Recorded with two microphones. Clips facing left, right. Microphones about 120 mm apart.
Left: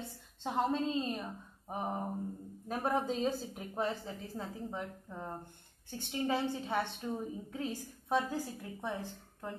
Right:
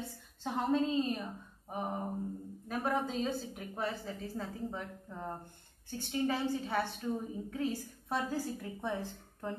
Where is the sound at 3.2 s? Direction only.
25° left (ahead or behind).